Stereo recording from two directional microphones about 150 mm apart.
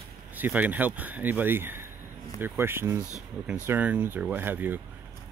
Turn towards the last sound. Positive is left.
turn(degrees=-15)  # may be behind; listen again after turning